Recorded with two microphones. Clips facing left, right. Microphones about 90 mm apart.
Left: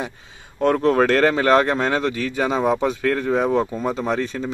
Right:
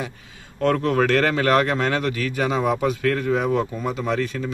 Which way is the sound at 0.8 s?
35° left (ahead or behind).